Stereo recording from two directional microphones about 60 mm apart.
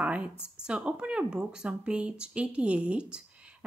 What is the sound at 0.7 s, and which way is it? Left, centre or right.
Speech, centre.